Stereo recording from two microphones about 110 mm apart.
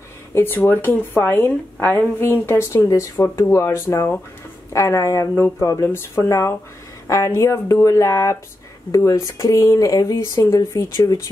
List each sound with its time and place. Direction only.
0.3 s a woman's voice: 20° left (ahead or behind)